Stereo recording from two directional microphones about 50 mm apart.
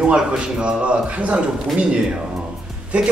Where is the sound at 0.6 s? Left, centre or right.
Right.